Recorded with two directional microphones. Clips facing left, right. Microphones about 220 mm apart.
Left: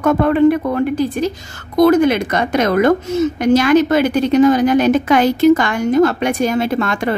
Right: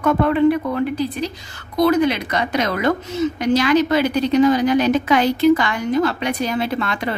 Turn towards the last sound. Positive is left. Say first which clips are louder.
# left 5 dB
turn(degrees=45)  # may be behind; listen again after turning